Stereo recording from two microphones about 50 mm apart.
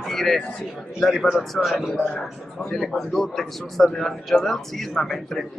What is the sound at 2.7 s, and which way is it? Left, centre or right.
A man's voice, centre.